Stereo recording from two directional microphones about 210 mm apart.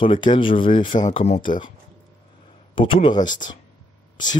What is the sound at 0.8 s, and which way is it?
Speech, 35° left (ahead or behind).